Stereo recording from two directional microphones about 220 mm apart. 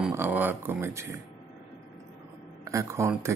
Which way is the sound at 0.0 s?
10° right (ahead or behind).